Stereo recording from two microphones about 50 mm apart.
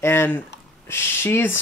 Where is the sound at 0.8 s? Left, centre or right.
Left.